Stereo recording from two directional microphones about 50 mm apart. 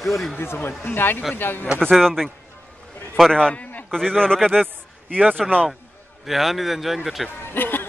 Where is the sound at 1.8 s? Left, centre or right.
Centre.